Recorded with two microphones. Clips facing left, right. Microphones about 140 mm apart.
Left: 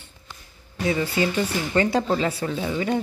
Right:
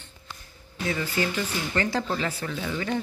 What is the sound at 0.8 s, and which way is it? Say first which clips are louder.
Speech: left 5 dB; 20° left (ahead or behind).